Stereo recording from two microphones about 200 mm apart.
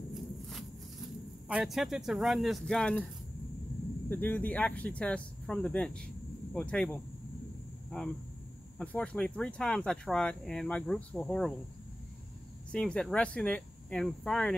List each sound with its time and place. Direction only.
0.1 s a sound: centre (ahead or behind)
4.1 s speech: 10° left (ahead or behind)
8.7 s speech: 5° left (ahead or behind)
12.7 s speech: 5° left (ahead or behind)